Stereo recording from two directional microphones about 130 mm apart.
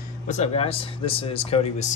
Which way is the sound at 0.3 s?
55° left (ahead or behind).